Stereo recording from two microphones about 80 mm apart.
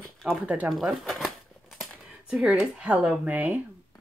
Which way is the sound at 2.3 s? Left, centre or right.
Centre.